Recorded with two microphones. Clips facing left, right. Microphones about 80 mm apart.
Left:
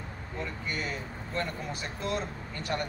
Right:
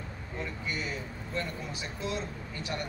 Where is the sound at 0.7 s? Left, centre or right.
Left.